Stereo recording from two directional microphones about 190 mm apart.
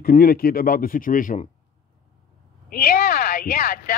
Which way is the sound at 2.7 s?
55° left (ahead or behind).